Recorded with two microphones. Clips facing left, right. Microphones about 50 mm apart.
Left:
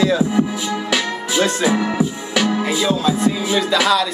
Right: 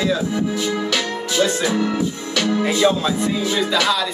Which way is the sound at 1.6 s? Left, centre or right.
Centre.